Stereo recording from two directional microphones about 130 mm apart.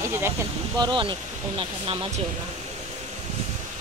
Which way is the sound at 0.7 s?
35° right (ahead or behind).